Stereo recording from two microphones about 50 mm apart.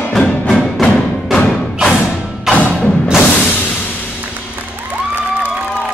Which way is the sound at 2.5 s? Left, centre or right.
Centre.